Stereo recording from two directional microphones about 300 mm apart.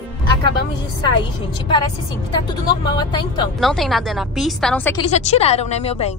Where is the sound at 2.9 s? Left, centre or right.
Centre.